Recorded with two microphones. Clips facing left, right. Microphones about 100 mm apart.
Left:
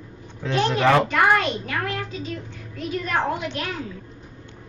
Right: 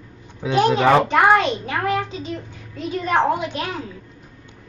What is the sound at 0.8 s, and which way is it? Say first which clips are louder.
A child's voice: even; 20° right (ahead or behind).